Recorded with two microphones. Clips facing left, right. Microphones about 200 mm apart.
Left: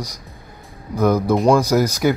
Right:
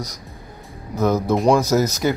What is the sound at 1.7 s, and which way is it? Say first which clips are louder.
Speech: left 2 dB; 15° left (ahead or behind).